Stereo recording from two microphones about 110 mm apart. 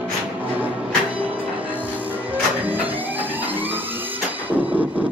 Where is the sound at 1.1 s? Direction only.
15° right (ahead or behind).